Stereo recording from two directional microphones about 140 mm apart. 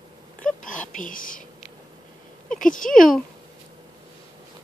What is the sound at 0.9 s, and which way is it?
Speech, 75° left (ahead or behind).